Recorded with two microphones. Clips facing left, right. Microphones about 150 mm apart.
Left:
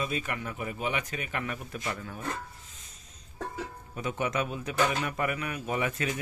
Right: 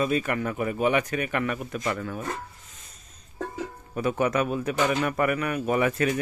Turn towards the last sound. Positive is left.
turn(degrees=-65)  # may be behind; listen again after turning